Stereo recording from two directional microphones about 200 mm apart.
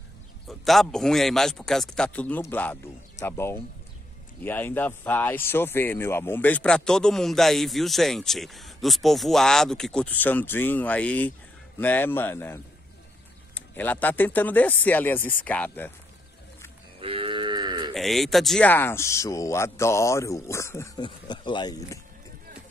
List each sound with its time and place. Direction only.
0.5 s a man's voice: centre (ahead or behind)
13.7 s speech: 10° left (ahead or behind)
17.0 s cattle: 25° right (ahead or behind)
17.9 s speech: centre (ahead or behind); by 22.0 s 15° left (ahead or behind)